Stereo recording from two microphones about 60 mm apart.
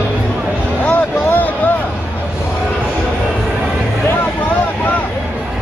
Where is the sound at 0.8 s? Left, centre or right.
Left.